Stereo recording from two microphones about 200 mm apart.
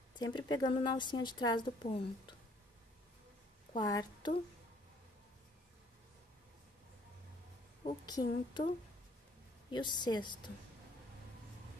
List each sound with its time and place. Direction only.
0.2 s a woman's voice: 20° left (ahead or behind)
3.7 s a woman's voice: 20° left (ahead or behind)
8.0 s a woman's voice: 20° left (ahead or behind)
9.7 s a woman's voice: 25° left (ahead or behind)